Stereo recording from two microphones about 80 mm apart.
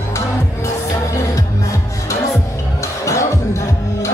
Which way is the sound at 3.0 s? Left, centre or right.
Left.